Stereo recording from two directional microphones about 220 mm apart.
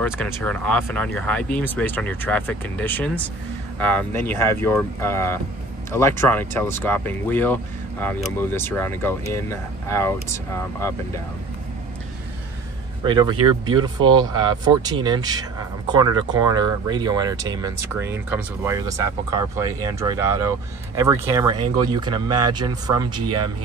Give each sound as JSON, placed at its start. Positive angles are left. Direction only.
{"t": 0.0, "sound": "speech", "side_deg": 5}
{"t": 13.0, "sound": "speech", "side_deg": -20}